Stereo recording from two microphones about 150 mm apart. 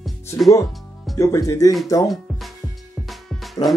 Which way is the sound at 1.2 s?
20° left (ahead or behind).